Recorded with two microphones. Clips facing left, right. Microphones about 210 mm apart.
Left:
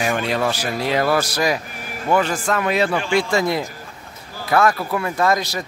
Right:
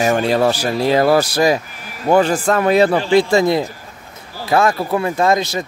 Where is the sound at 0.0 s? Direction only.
40° right (ahead or behind).